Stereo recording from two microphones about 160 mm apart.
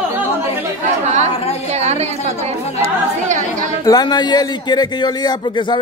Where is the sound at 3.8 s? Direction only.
25° left (ahead or behind).